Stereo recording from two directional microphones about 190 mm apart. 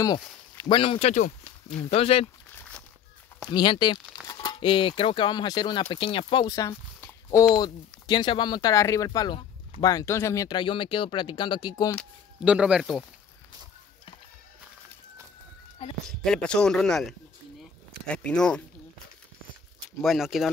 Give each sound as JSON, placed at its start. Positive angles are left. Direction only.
{"t": 0.6, "sound": "speech", "side_deg": 25}
{"t": 3.5, "sound": "speech", "side_deg": 25}
{"t": 11.9, "sound": "a sound", "side_deg": 5}
{"t": 12.4, "sound": "speech", "side_deg": -5}
{"t": 15.8, "sound": "speech", "side_deg": 30}
{"t": 16.3, "sound": "speech", "side_deg": 5}
{"t": 20.0, "sound": "speech", "side_deg": 0}